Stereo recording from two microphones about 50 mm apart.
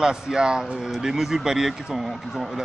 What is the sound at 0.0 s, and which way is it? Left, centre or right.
A man's voice, centre.